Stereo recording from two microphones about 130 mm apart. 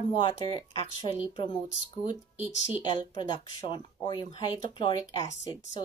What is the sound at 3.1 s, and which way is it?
Speech, 35° left (ahead or behind).